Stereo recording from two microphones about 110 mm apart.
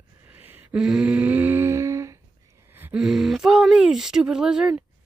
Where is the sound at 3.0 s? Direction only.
5° right (ahead or behind).